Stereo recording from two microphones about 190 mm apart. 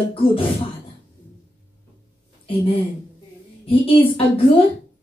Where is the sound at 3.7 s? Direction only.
30° left (ahead or behind).